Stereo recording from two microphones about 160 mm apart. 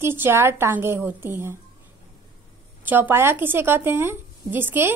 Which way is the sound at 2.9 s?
15° right (ahead or behind).